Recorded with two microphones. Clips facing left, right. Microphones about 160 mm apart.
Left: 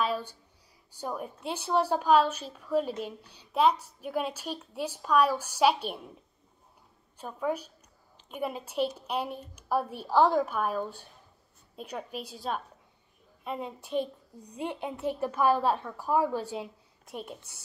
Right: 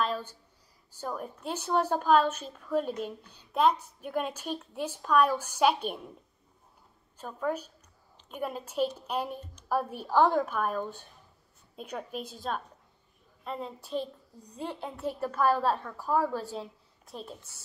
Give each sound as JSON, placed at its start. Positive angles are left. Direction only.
{"t": 0.0, "sound": "a sound", "side_deg": 10}
{"t": 1.0, "sound": "a woman's voice", "side_deg": 5}
{"t": 2.2, "sound": "a woman's voice", "side_deg": -50}
{"t": 2.5, "sound": "a woman's voice", "side_deg": 5}
{"t": 7.2, "sound": "a woman's voice", "side_deg": 10}